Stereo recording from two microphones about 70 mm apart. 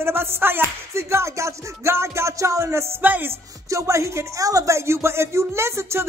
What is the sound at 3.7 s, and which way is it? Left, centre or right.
Speech, right.